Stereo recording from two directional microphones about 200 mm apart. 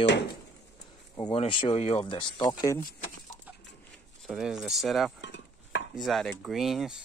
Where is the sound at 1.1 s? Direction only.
25° left (ahead or behind).